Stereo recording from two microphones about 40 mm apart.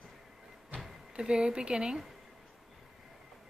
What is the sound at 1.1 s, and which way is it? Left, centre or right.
Speech, right.